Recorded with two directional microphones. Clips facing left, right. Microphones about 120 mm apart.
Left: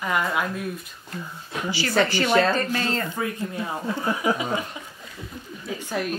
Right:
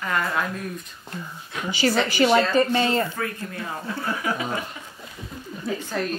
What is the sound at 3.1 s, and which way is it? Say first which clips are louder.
Speech: left 2 dB; 15° left (ahead or behind).